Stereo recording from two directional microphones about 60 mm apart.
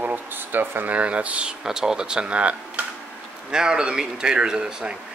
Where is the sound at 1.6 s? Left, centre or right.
Centre.